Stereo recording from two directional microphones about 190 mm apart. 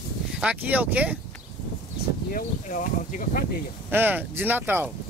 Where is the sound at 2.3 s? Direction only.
45° left (ahead or behind).